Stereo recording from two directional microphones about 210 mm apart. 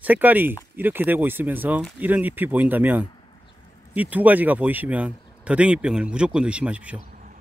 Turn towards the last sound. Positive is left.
turn(degrees=-35)  # may be behind; listen again after turning